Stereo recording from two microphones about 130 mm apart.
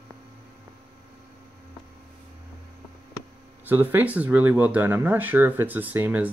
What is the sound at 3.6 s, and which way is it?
Speech, 15° right (ahead or behind).